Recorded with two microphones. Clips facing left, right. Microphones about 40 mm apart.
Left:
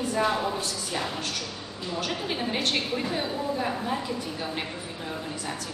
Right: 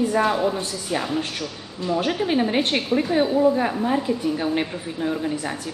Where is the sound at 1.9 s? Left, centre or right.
Right.